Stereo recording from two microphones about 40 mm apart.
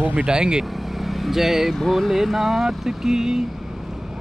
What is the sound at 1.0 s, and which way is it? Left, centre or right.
Speech, centre.